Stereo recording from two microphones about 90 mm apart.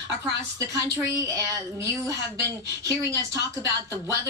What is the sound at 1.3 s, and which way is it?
Speech, 35° right (ahead or behind).